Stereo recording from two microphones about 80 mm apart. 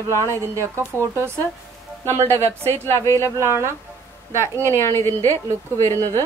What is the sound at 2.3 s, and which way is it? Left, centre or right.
A woman's voice, left.